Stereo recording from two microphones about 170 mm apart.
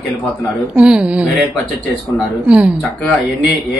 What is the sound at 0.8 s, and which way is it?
Speech, 5° right (ahead or behind).